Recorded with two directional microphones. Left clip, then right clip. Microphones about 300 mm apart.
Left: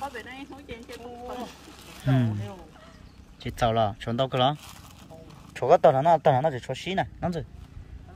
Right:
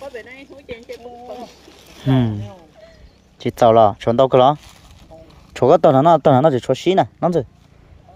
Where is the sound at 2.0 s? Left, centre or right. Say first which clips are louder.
Right 9 dB; centre.